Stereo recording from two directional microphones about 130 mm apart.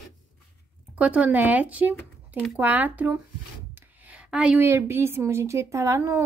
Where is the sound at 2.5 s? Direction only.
15° right (ahead or behind).